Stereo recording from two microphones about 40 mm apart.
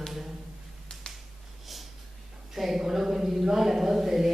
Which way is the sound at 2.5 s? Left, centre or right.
Centre.